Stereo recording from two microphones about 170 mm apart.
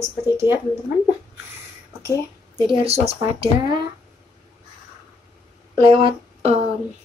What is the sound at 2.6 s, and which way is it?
Speech, 35° right (ahead or behind).